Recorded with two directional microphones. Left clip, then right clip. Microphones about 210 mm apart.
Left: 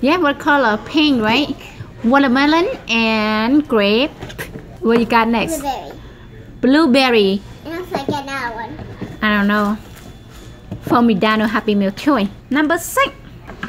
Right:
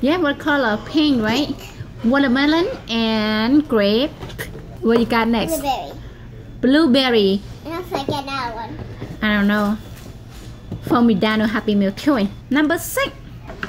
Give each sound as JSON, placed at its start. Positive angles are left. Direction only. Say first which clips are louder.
{"t": 0.0, "sound": "a woman's voice", "louder": "left 3 dB", "side_deg": 15}
{"t": 4.8, "sound": "a woman's voice", "louder": "left 3 dB", "side_deg": 10}
{"t": 6.6, "sound": "a sound", "louder": "left 2 dB", "side_deg": 15}
{"t": 9.2, "sound": "a woman's voice", "louder": "left 3 dB", "side_deg": 10}
{"t": 10.9, "sound": "a woman's voice", "louder": "left 3 dB", "side_deg": 10}